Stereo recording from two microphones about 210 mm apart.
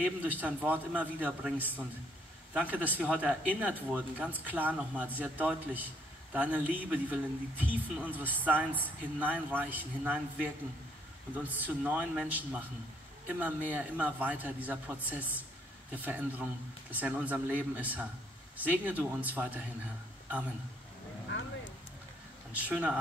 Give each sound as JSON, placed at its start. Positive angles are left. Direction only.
{"t": 0.0, "sound": "speech", "side_deg": -10}
{"t": 21.3, "sound": "a sound", "side_deg": 65}
{"t": 22.6, "sound": "speech", "side_deg": -5}